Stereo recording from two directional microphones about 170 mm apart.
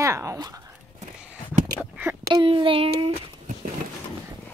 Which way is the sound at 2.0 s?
15° right (ahead or behind).